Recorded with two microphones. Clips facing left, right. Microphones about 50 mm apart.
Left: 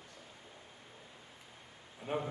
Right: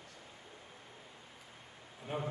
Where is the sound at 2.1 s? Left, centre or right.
Left.